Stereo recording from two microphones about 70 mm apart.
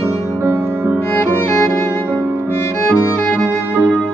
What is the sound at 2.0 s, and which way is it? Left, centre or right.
Music, right.